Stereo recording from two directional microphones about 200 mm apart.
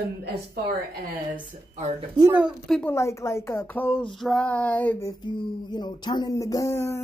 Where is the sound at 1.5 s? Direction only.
35° right (ahead or behind).